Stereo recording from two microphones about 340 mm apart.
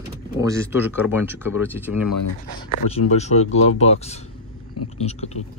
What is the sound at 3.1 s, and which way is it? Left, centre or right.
Speech, centre.